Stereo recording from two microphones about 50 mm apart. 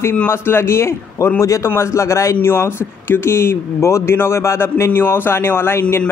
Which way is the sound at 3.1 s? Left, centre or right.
Left.